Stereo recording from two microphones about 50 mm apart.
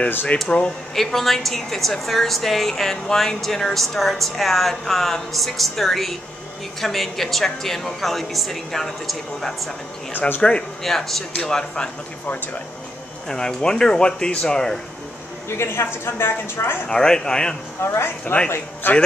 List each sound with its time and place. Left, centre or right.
0.3 s speech: left
0.9 s speech: centre
10.1 s speech: left
10.8 s speech: centre
13.3 s speech: centre
15.5 s a woman's voice: left
16.8 s speech: centre
17.8 s a woman's voice: left
18.5 s speech: left